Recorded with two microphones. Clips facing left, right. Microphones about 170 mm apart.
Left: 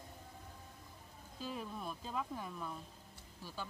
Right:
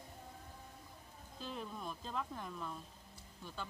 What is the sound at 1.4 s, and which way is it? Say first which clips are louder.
Speech: left 1 dB; 5° left (ahead or behind).